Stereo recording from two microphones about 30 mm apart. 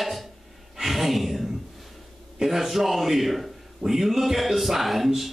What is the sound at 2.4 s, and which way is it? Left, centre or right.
A man's voice, centre.